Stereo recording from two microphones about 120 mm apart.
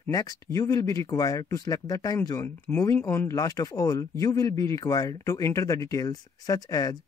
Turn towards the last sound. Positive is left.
turn(degrees=30)  # may be behind; listen again after turning